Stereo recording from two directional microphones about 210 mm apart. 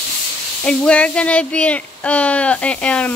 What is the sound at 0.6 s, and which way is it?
Speech, 5° left (ahead or behind).